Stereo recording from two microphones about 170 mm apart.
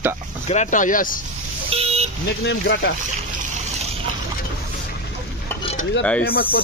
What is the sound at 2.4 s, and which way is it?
Speech, 85° left.